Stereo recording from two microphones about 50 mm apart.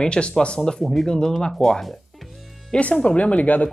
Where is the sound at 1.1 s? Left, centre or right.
Centre.